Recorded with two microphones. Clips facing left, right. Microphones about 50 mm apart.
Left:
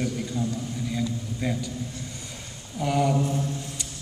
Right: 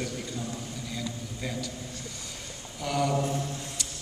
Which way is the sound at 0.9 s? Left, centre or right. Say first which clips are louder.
Left 6 dB; centre.